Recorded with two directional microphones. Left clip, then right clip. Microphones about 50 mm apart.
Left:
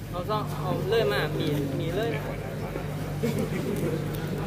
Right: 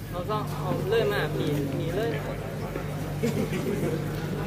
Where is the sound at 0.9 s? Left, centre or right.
Centre.